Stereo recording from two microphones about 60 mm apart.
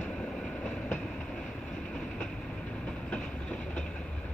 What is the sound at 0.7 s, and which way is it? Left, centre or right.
Train, left.